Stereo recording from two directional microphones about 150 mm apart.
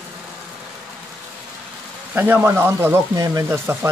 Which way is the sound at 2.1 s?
15° right (ahead or behind).